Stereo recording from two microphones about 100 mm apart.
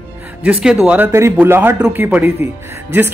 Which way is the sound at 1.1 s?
25° right (ahead or behind).